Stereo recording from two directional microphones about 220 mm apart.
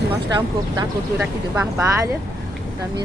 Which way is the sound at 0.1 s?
15° right (ahead or behind).